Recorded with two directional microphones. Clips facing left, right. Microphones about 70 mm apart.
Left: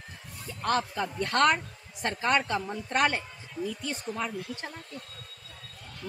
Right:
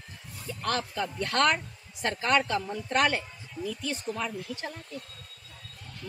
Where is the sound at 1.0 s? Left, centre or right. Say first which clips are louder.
Right 1 dB; left.